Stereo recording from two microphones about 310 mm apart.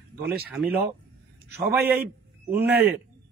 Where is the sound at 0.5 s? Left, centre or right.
Centre.